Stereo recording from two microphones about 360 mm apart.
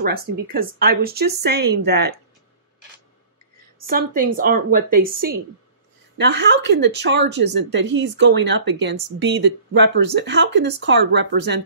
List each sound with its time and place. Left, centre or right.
0.0 s speech: right
3.8 s speech: right